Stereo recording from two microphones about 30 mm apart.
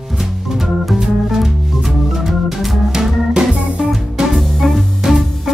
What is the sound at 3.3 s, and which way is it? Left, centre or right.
Music, centre.